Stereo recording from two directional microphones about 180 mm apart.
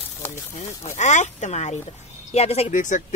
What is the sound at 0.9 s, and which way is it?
Speech, 40° left (ahead or behind).